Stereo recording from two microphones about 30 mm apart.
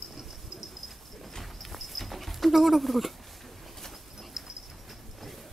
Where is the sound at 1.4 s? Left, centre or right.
Centre.